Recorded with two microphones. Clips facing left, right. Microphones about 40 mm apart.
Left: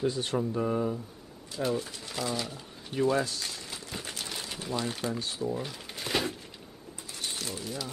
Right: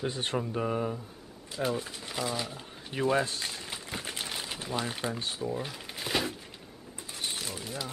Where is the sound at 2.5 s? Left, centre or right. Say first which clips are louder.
Left 2 dB; right; by 6.3 s centre.